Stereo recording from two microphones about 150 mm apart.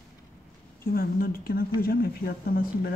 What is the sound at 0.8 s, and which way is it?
Speech, 80° left.